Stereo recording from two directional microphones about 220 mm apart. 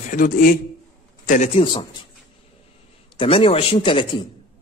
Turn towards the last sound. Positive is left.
turn(degrees=25)  # may be behind; listen again after turning